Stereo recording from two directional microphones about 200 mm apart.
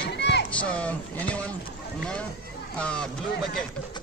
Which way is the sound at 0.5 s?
5° left (ahead or behind).